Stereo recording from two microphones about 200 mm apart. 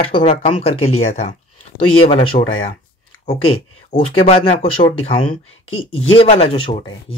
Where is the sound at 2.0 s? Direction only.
30° left (ahead or behind).